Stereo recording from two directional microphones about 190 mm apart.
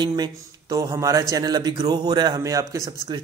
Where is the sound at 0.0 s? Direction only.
20° right (ahead or behind).